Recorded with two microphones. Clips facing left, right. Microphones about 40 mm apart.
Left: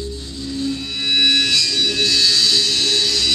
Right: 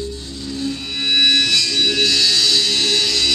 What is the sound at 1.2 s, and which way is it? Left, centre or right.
Music, centre.